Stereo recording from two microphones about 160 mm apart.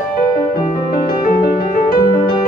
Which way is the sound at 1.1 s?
65° left (ahead or behind).